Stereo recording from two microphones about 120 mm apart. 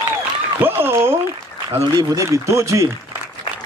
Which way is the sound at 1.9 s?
30° right (ahead or behind).